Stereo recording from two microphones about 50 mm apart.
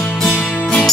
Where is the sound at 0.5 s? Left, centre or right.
Left.